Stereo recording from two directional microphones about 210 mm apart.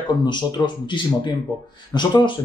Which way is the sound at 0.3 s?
20° left (ahead or behind).